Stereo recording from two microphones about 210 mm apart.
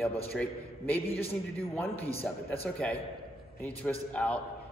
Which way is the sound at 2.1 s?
30° left (ahead or behind).